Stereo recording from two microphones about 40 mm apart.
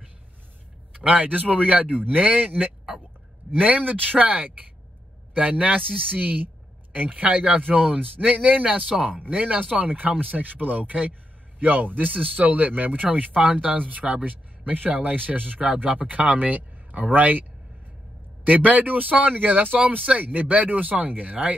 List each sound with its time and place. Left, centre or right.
0.9 s speech: right
3.6 s speech: right